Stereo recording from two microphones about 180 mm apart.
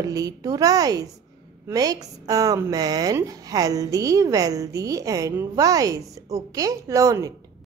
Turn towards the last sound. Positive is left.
turn(degrees=-15)  # may be behind; listen again after turning